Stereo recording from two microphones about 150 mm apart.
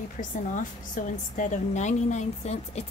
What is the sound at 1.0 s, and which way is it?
Speech, 60° left (ahead or behind).